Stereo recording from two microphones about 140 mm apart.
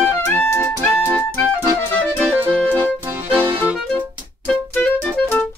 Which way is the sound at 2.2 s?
15° right (ahead or behind).